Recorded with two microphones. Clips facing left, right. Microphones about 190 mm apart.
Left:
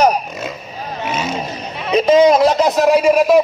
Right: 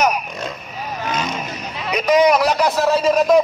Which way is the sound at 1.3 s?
25° left (ahead or behind).